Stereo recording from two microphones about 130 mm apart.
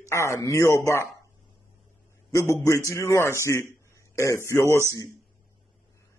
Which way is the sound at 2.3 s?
20° left (ahead or behind).